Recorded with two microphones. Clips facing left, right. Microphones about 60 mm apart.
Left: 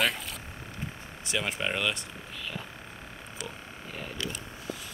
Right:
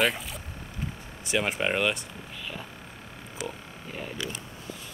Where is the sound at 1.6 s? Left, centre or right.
Right.